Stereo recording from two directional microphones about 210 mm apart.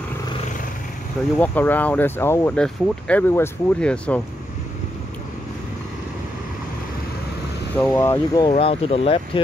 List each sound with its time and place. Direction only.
1.4 s speech: 10° left (ahead or behind)
7.7 s speech: 10° left (ahead or behind); by 9.4 s 25° left (ahead or behind)